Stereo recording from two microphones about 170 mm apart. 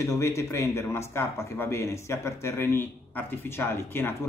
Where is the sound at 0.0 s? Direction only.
20° left (ahead or behind).